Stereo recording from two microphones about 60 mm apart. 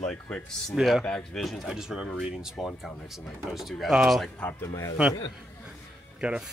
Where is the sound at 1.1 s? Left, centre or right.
Centre.